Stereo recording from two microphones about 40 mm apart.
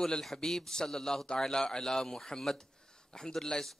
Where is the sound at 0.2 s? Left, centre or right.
Centre.